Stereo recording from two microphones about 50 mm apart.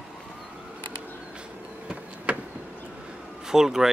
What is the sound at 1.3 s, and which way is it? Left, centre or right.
Power windows, centre.